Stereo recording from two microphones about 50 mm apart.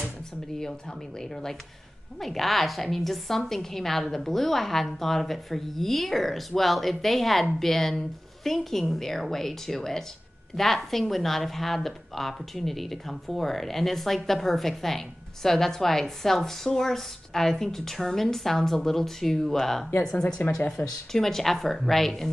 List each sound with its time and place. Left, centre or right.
0.6 s speech: centre
20.8 s speech: left
21.1 s speech: centre